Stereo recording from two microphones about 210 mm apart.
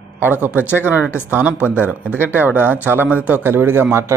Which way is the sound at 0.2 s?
10° right (ahead or behind).